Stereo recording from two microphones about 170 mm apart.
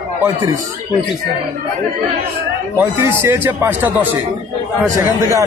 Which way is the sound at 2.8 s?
15° right (ahead or behind).